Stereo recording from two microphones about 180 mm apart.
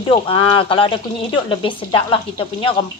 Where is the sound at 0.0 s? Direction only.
30° left (ahead or behind).